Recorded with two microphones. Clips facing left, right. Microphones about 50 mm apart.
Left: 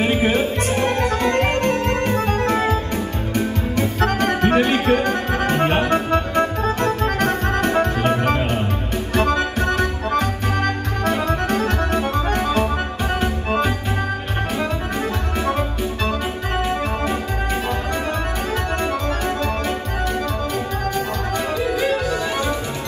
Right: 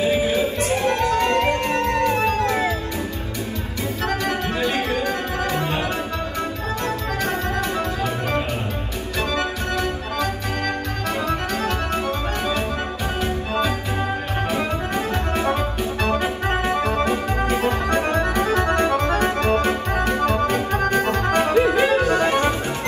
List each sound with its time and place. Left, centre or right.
0.0 s music: left
4.0 s music: left
15.8 s music: right